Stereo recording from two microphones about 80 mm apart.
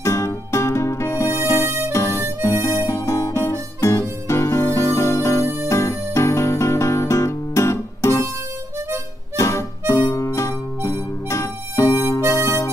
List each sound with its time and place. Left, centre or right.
0.0 s music: left
1.9 s harmonica: left
3.8 s music: left
9.4 s harmonica: left
12.2 s harmonica: right